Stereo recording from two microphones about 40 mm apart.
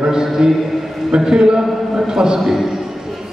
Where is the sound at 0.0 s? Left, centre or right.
Centre.